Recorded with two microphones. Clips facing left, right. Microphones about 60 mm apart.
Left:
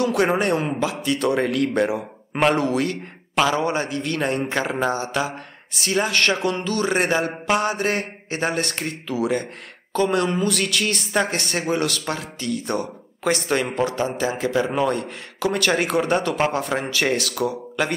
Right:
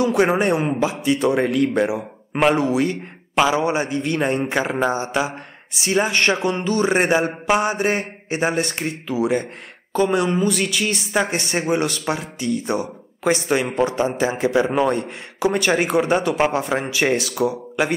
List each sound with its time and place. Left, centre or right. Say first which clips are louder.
0.0 s a woman's voice: right 2 dB; centre
13.9 s a man's voice: right 3 dB; centre